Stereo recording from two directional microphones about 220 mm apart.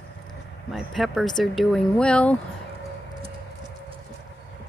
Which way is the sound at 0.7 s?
Centre (ahead or behind).